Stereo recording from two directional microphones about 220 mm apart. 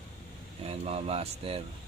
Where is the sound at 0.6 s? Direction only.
30° right (ahead or behind).